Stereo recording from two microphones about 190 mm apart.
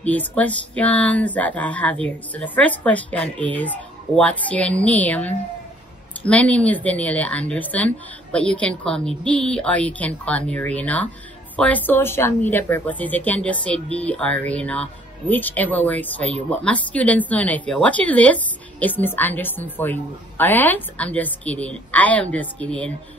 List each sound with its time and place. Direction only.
0.0 s speech: 10° left (ahead or behind)